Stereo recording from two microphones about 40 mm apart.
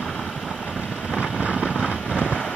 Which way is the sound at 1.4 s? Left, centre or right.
Right.